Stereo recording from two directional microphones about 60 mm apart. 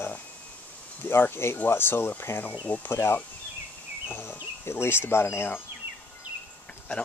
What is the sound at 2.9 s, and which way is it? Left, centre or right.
Speech, left.